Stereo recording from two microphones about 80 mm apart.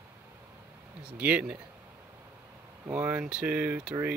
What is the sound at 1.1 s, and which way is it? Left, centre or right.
Speech, centre.